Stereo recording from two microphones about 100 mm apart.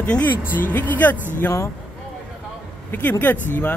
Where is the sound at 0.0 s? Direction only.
15° left (ahead or behind).